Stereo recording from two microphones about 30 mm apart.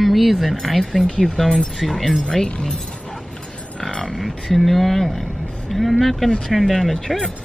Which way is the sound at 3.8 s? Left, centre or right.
Left.